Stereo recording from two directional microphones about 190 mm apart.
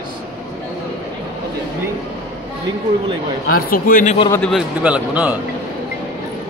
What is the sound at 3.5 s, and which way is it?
Speech, 50° left (ahead or behind).